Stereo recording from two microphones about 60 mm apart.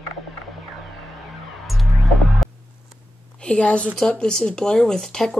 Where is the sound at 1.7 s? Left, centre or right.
Centre.